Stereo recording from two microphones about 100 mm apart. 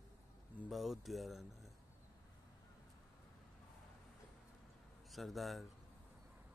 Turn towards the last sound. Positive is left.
turn(degrees=0)  # may be behind; listen again after turning